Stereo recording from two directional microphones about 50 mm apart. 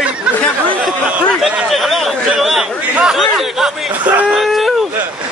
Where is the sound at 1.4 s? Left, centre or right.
Centre.